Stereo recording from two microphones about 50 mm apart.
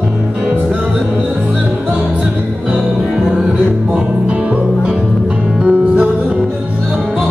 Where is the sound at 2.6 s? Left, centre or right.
Centre.